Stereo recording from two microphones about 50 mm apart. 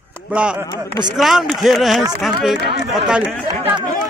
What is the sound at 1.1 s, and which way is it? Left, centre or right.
Speech, centre.